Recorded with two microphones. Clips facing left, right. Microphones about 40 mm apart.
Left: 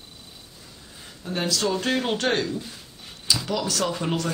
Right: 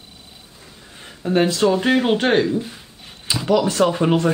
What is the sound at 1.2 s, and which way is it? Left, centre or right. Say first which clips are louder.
Speech: right 9 dB; right.